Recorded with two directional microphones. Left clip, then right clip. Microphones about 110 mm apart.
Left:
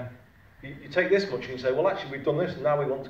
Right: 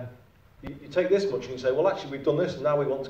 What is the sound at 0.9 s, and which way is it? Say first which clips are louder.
A man's voice: even; 30° right (ahead or behind).